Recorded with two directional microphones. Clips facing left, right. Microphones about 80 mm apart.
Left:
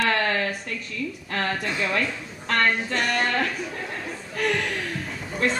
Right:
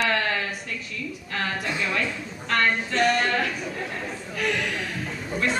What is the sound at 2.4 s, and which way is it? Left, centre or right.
Speech, left.